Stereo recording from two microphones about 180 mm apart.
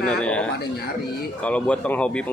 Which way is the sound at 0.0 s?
5° left (ahead or behind).